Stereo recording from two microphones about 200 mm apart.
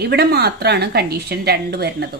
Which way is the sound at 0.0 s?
55° right (ahead or behind).